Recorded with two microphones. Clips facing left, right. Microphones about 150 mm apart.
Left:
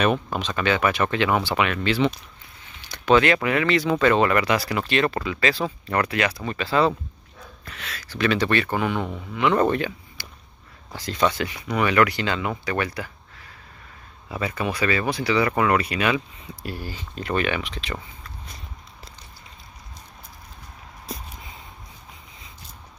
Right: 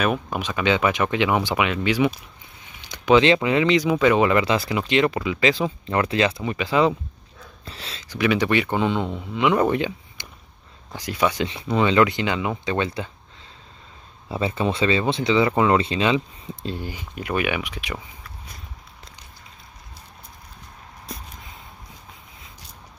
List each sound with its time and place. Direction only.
0.0 s speech: 10° right (ahead or behind)
2.9 s speech: 20° right (ahead or behind)
7.6 s speech: 30° right (ahead or behind)
8.1 s speech: 15° right (ahead or behind)
11.4 s speech: 25° right (ahead or behind)